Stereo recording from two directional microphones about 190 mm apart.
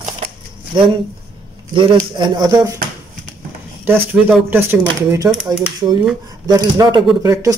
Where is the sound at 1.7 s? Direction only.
25° right (ahead or behind).